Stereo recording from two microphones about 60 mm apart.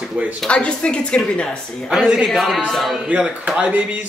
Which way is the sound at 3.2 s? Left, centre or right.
Right.